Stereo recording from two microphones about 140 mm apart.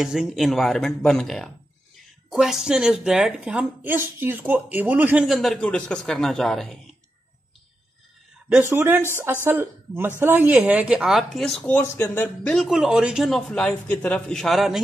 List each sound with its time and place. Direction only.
0.0 s a man's voice: 5° right (ahead or behind)
5.2 s a man's voice: centre (ahead or behind)
8.6 s a woman's voice: 15° right (ahead or behind); by 12.6 s 10° left (ahead or behind)
12.6 s a man's voice: 5° right (ahead or behind)